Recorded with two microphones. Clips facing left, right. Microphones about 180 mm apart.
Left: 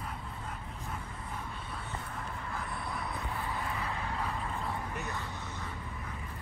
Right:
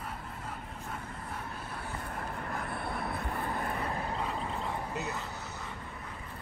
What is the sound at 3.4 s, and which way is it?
Vehicle, 60° right (ahead or behind).